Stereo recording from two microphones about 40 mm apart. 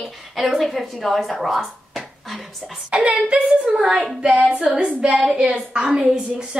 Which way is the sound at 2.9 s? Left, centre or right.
Right.